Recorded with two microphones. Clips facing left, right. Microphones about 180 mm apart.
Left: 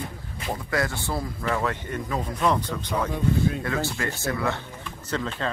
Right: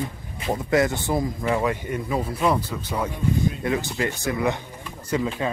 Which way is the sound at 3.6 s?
20° right (ahead or behind).